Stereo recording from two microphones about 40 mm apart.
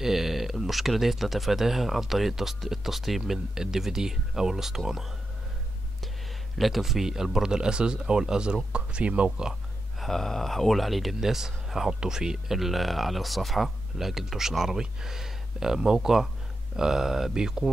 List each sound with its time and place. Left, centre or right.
0.0 s speech: centre
6.6 s speech: centre; by 9.3 s right
9.9 s speech: centre
12.5 s speech: centre